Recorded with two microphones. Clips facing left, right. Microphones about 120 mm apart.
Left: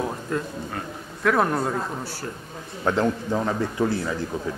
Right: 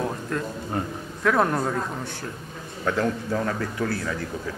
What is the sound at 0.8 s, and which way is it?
Speech, 25° right (ahead or behind).